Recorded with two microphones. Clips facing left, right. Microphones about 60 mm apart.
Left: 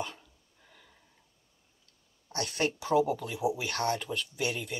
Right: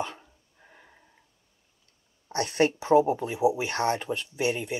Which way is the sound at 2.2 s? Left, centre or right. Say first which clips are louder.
Right 7 dB; right.